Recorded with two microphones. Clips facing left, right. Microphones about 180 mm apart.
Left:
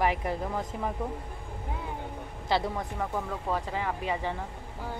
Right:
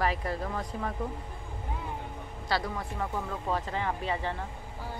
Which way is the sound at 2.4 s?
20° left (ahead or behind).